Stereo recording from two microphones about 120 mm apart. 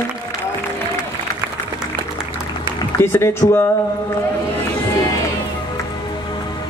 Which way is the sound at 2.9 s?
20° left (ahead or behind).